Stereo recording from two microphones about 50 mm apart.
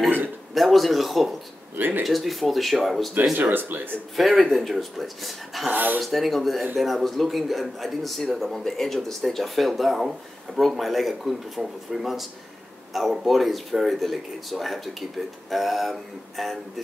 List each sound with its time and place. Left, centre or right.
0.6 s a man's voice: centre
1.8 s speech: right
2.0 s a man's voice: centre
3.3 s speech: right
4.5 s a man's voice: centre
5.7 s speech: right
5.9 s a man's voice: centre